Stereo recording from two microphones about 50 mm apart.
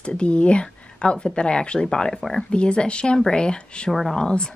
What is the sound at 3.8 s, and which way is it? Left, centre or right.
Speech, centre.